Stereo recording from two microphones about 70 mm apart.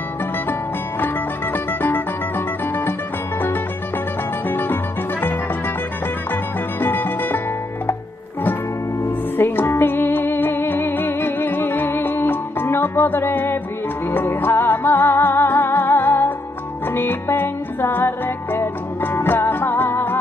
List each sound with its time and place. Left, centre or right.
1.0 s music: left
4.5 s music: left
6.8 s music: left
9.4 s music: left